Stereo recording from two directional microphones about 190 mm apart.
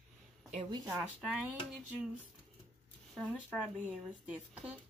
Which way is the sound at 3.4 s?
5° right (ahead or behind).